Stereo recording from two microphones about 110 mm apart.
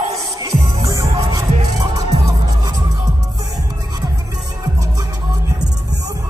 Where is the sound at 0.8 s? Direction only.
30° right (ahead or behind).